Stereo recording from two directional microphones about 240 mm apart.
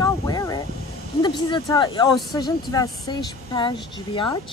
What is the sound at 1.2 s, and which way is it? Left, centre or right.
Speech, centre.